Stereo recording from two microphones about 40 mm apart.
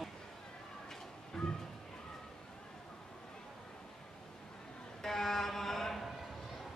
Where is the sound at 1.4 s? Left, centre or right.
Centre.